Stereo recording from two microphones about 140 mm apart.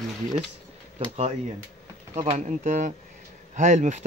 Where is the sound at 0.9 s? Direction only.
50° right (ahead or behind).